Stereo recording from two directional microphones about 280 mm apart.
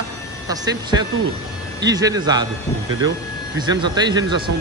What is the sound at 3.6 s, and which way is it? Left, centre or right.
Speech, centre.